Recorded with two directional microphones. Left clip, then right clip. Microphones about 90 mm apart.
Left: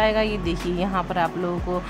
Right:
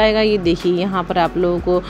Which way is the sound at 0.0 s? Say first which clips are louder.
Right 7 dB; 40° right (ahead or behind).